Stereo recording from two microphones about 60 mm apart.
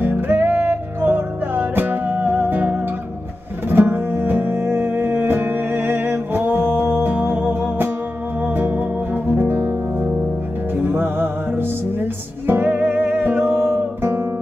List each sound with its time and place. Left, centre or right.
0.0 s music: right